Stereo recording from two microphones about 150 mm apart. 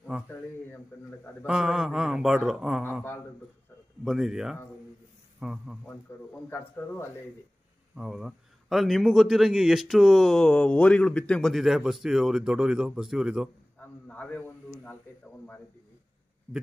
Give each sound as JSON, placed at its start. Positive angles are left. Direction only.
{"t": 0.9, "sound": "a man's voice", "side_deg": 15}
{"t": 1.4, "sound": "a man's voice", "side_deg": -5}
{"t": 4.0, "sound": "a man's voice", "side_deg": 0}
{"t": 6.1, "sound": "a man's voice", "side_deg": 15}
{"t": 7.9, "sound": "a man's voice", "side_deg": -5}
{"t": 13.7, "sound": "snake", "side_deg": 10}